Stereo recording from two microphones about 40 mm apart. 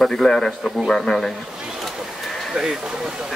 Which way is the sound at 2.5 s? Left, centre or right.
Centre.